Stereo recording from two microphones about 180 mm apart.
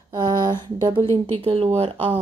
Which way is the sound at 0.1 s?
25° right (ahead or behind).